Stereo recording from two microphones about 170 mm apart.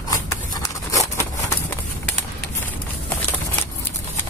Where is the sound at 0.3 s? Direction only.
20° left (ahead or behind).